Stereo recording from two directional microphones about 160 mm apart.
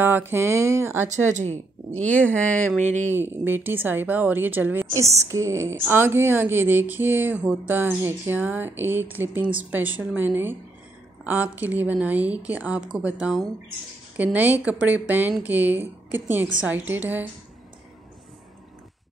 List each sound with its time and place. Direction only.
0.0 s speech: 15° right (ahead or behind)
1.0 s speech: 50° right (ahead or behind)
2.1 s speech: 10° left (ahead or behind)
2.8 s speech: 45° right (ahead or behind)
3.1 s speech: 15° right (ahead or behind)